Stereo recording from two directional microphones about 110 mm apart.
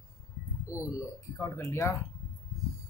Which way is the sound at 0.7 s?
30° left (ahead or behind).